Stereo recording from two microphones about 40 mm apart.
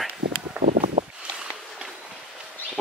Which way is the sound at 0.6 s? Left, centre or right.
Right.